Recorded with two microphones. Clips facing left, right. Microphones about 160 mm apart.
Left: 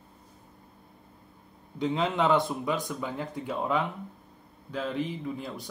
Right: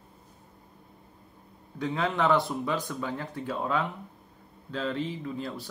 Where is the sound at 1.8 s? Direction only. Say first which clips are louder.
Left 1 dB; 25° left (ahead or behind).